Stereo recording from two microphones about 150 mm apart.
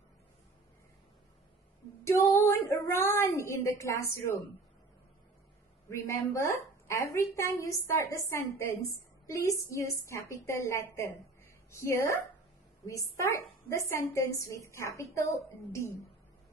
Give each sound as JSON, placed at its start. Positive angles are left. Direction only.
{"t": 2.0, "sound": "a woman's voice", "side_deg": 20}
{"t": 5.9, "sound": "a woman's voice", "side_deg": 20}